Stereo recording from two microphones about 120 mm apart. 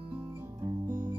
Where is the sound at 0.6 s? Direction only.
35° right (ahead or behind).